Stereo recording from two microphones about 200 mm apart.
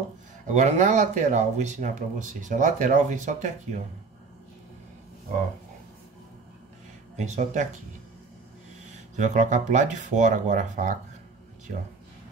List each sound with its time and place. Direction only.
0.5 s speech: 35° right (ahead or behind)
7.2 s speech: 35° right (ahead or behind)
9.1 s speech: 35° right (ahead or behind)